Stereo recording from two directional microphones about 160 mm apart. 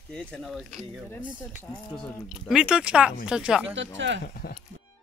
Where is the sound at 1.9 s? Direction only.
Centre (ahead or behind).